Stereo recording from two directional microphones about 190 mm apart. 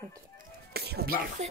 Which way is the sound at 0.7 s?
60° right (ahead or behind).